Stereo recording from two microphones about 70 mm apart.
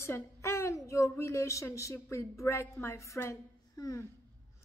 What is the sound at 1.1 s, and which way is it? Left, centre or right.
A woman's voice, left.